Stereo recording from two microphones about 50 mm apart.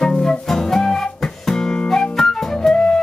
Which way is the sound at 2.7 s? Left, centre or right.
Centre.